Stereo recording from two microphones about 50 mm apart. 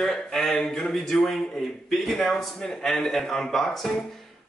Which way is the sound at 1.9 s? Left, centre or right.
Centre.